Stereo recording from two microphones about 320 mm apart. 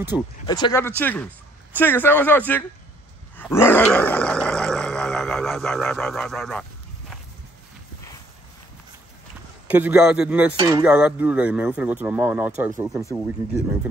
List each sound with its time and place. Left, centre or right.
0.1 s speech: centre
0.5 s speech: centre
3.3 s groan: centre
9.7 s speech: centre
10.5 s a sound: centre
10.8 s speech: centre